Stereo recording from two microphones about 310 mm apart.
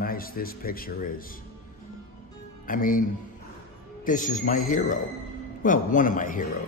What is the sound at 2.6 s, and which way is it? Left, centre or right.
Speech, left.